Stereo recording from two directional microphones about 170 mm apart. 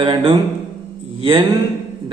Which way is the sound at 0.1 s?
30° right (ahead or behind).